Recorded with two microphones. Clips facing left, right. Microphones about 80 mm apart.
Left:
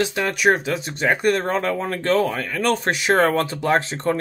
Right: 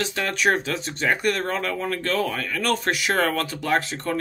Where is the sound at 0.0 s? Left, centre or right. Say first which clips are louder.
Left 4 dB; centre.